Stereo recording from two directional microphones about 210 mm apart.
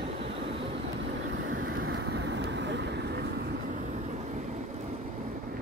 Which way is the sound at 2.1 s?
55° right (ahead or behind).